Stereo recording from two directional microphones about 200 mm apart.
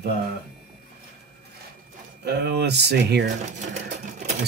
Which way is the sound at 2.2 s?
55° right (ahead or behind).